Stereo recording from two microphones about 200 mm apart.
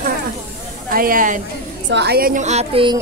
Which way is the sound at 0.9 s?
45° right (ahead or behind).